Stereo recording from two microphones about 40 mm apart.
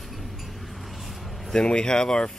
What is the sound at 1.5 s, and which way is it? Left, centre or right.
Speech, left.